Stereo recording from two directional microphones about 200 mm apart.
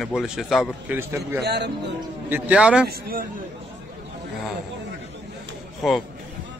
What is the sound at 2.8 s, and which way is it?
Speech, 50° right (ahead or behind).